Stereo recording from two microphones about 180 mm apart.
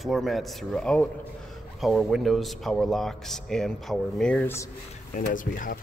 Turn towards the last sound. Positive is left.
turn(degrees=45)  # may be behind; listen again after turning